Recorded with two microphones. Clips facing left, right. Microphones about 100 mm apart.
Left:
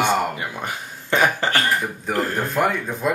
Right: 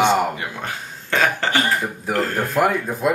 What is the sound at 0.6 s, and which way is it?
Speech, 15° left (ahead or behind).